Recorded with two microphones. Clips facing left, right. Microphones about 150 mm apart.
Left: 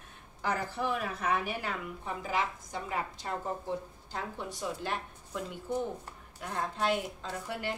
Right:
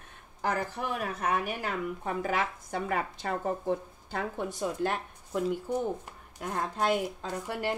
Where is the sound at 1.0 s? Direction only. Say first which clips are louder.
Right 2 dB; 45° right (ahead or behind).